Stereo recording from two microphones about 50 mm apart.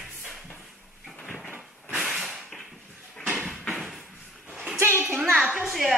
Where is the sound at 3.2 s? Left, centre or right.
Right.